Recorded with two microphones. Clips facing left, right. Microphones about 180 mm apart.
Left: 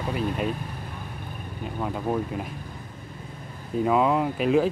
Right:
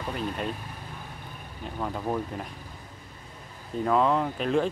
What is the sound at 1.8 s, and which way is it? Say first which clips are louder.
Speech: left 2 dB; 5° left (ahead or behind).